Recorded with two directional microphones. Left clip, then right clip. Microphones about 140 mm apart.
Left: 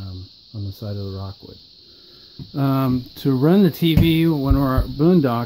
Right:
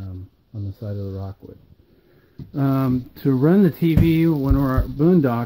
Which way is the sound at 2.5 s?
5° left (ahead or behind).